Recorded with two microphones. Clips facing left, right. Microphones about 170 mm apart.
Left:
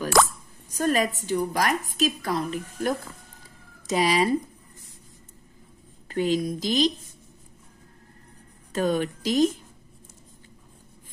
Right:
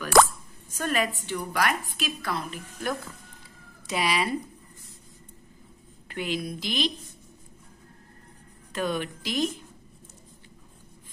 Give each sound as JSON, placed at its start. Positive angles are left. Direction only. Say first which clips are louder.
{"t": 0.7, "sound": "a woman's voice", "louder": "left 4 dB", "side_deg": 35}
{"t": 6.0, "sound": "a woman's voice", "louder": "left 7 dB", "side_deg": 40}
{"t": 8.7, "sound": "a woman's voice", "louder": "left 5 dB", "side_deg": 45}